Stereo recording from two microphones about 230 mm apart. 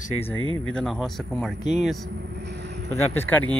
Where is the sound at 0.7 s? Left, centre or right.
Centre.